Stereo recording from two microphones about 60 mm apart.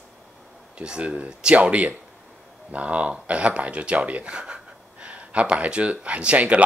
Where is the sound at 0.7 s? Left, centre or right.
Centre.